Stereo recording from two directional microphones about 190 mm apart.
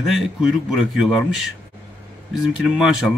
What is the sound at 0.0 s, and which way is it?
Speech, centre (ahead or behind).